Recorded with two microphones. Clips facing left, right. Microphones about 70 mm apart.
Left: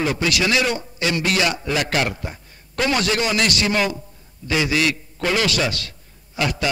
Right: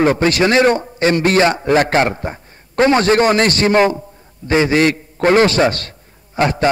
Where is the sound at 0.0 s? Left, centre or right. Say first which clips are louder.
Right 8 dB; right.